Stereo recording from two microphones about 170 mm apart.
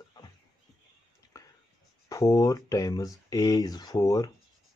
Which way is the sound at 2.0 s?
20° left (ahead or behind).